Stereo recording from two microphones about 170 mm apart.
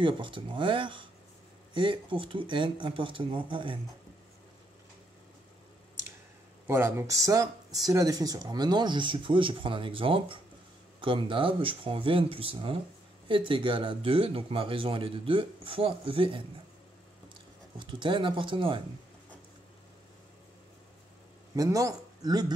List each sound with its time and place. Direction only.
0.0 s speech: 30° right (ahead or behind)
6.7 s speech: 15° right (ahead or behind); by 16.4 s 30° right (ahead or behind)
17.7 s speech: 30° right (ahead or behind)
21.5 s speech: 20° right (ahead or behind)